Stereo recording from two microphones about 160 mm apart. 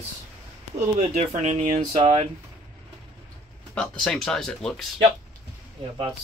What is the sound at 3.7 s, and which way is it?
Speech, 5° left (ahead or behind).